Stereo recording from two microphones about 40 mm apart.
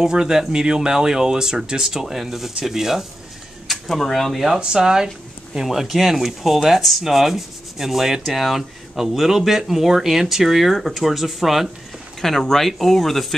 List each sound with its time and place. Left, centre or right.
0.0 s rub: centre
3.6 s speech: centre
4.6 s rub: centre
5.7 s speech: centre
7.0 s rub: centre
10.8 s speech: centre
12.2 s speech: centre